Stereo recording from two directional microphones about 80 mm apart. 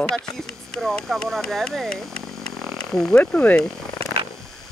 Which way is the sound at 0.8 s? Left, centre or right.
Centre.